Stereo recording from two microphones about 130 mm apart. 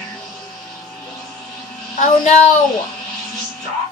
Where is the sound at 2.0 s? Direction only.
70° left (ahead or behind).